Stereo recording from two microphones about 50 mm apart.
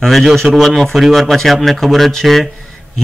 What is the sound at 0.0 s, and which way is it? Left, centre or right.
A man's voice, centre.